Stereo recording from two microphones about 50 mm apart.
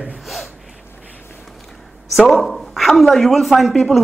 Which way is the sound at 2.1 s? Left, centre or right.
Centre.